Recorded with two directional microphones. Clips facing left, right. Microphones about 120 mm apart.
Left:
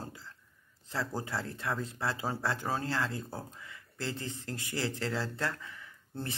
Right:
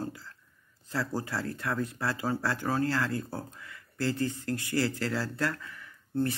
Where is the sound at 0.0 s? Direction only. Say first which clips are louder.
Right 7 dB; 25° left (ahead or behind).